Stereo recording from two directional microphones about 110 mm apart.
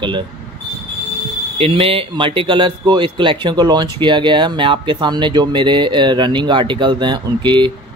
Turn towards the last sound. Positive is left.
turn(degrees=-45)  # may be behind; listen again after turning